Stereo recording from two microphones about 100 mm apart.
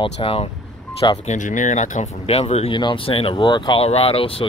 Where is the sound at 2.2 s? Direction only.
85° left.